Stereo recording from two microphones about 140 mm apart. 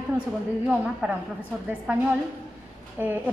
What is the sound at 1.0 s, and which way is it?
Speech, 5° right (ahead or behind).